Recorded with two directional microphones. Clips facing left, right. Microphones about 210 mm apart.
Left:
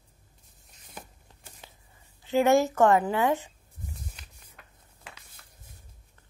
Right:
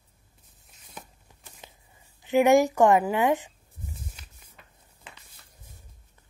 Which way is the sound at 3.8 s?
Centre (ahead or behind).